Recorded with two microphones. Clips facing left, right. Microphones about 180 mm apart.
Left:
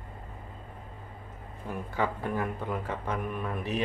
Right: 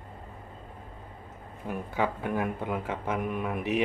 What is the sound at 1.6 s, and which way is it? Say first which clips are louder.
Speech: right 1 dB; 15° right (ahead or behind).